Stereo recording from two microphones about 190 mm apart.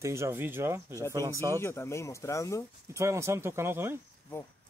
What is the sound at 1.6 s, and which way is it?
Speech, 15° left (ahead or behind).